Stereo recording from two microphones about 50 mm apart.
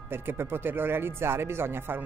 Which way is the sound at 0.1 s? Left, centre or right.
Right.